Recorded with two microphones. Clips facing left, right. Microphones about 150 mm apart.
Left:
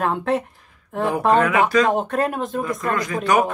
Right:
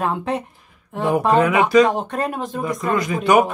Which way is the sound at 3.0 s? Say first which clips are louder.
Right 4 dB; 10° right (ahead or behind).